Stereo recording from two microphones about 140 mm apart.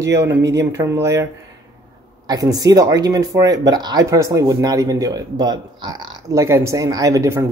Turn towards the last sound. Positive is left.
turn(degrees=-20)  # may be behind; listen again after turning